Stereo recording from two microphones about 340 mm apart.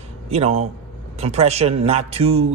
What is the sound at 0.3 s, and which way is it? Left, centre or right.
Speech, centre.